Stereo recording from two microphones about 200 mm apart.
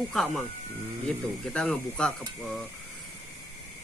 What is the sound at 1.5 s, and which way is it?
Speech, 5° left (ahead or behind).